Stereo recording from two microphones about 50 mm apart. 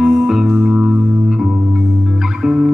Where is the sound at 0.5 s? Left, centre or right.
Right.